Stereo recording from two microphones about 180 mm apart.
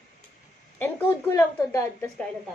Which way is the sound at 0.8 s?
10° left (ahead or behind).